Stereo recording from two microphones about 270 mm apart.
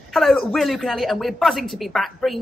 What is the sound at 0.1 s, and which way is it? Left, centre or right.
Speech, centre.